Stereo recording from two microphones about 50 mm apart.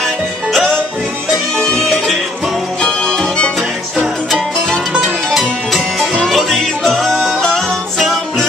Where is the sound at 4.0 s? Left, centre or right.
Centre.